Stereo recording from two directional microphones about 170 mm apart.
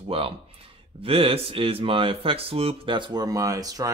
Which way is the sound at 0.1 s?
35° right (ahead or behind).